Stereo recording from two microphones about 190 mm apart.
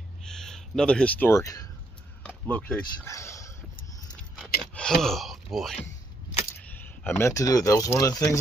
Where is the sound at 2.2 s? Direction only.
10° left (ahead or behind).